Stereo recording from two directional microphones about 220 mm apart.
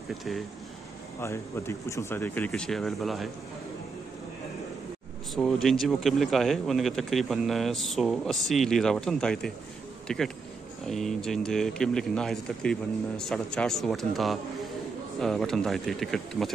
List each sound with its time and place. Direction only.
1.2 s speech: 15° left (ahead or behind)
5.3 s speech: centre (ahead or behind)